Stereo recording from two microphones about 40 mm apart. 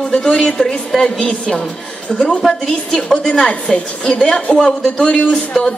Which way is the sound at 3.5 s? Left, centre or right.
Left.